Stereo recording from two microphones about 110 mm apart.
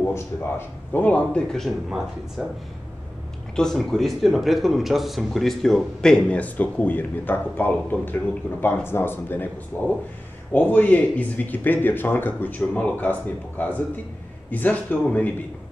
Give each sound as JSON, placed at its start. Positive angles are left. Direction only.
{"t": 0.1, "sound": "speech", "side_deg": 20}
{"t": 3.5, "sound": "speech", "side_deg": 5}